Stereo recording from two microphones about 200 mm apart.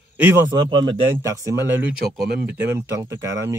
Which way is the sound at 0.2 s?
15° right (ahead or behind).